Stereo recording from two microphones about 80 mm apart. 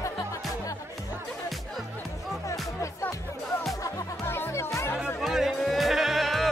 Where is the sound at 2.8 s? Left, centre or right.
Left.